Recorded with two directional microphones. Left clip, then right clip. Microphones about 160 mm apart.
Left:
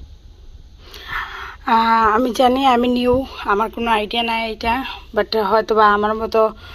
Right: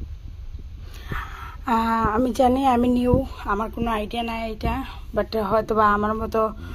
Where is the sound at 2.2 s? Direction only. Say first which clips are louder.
Left 5 dB; 15° right (ahead or behind).